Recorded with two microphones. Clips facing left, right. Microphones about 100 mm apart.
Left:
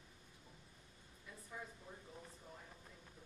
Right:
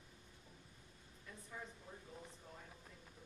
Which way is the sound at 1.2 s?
5° left (ahead or behind).